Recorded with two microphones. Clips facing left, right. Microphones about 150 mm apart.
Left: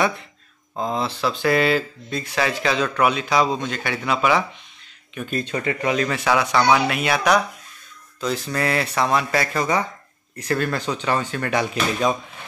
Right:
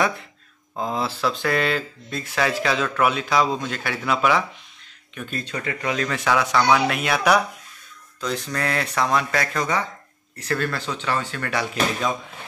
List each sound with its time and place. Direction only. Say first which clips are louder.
0.7 s speech: left 1 dB; 5° right (ahead or behind)
5.1 s speech: left 5 dB; 15° left (ahead or behind)
6.1 s speech: left 1 dB; 5° left (ahead or behind); by 11.6 s 20° left (ahead or behind)